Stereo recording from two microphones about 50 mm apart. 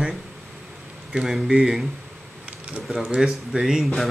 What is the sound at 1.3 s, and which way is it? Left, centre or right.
Speech, centre.